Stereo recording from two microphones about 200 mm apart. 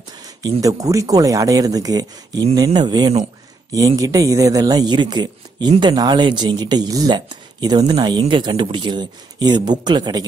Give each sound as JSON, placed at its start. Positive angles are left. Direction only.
{"t": 0.2, "sound": "speech", "side_deg": -20}